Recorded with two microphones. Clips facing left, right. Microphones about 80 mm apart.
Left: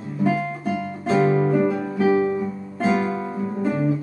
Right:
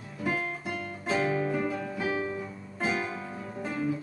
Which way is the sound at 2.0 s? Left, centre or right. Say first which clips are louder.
Left 14 dB; left.